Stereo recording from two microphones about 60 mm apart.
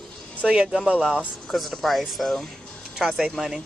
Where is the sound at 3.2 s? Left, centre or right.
Centre.